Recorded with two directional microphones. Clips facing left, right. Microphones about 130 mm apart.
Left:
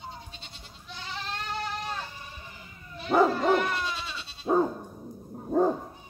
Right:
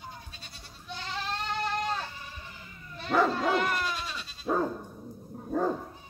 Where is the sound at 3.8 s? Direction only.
Centre (ahead or behind).